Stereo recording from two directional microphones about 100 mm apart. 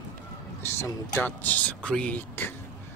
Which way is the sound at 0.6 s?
25° left (ahead or behind).